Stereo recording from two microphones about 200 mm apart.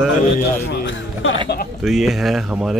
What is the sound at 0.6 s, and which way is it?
Speech, 60° left (ahead or behind).